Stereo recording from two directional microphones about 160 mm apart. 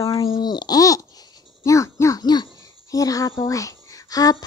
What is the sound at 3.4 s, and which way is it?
Speech, 20° left (ahead or behind).